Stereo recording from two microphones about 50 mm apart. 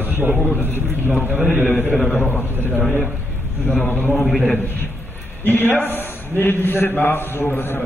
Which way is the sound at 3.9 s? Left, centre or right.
Left.